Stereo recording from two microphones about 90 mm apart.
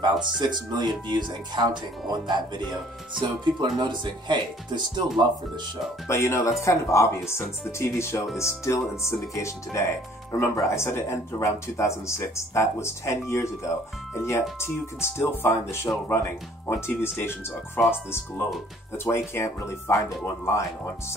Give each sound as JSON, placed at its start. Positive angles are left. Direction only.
{"t": 0.0, "sound": "speech", "side_deg": -55}
{"t": 6.0, "sound": "speech", "side_deg": 30}